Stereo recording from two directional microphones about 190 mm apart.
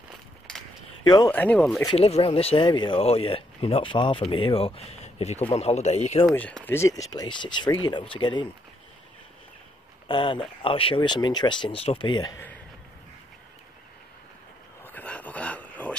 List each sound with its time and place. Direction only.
1.0 s speech: 20° left (ahead or behind)
1.3 s speech: 10° left (ahead or behind)
1.9 s a man's voice: 30° left (ahead or behind)
6.2 s speech: 5° left (ahead or behind); by 8.5 s 25° left (ahead or behind)
10.0 s speech: 25° left (ahead or behind)
14.9 s a sound: 10° left (ahead or behind)